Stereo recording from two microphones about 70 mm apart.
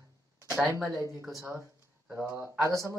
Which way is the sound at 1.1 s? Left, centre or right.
Centre.